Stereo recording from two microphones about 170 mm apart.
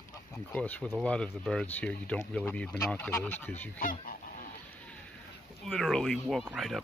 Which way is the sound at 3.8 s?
55° left (ahead or behind).